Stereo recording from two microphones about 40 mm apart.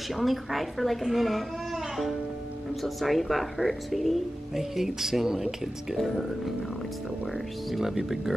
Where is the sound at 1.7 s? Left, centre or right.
Centre.